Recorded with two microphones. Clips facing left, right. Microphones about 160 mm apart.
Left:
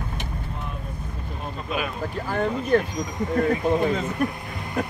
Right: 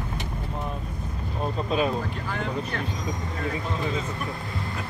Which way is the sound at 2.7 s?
40° left (ahead or behind).